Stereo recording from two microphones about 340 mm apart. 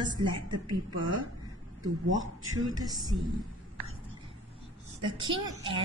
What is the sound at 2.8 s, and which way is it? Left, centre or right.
Speech, centre.